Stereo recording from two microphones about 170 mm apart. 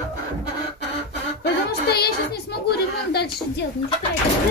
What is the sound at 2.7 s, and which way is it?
Speech, 70° left (ahead or behind).